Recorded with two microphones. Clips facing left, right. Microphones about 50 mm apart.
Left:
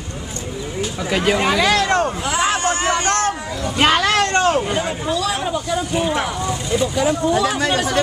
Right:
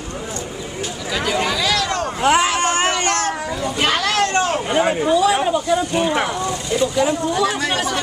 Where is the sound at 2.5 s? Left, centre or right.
Right.